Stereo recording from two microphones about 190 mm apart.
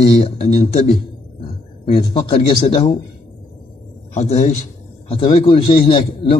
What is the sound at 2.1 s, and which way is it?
Speech, 25° left (ahead or behind).